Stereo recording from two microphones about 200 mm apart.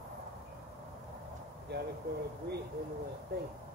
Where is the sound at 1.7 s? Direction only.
55° right (ahead or behind).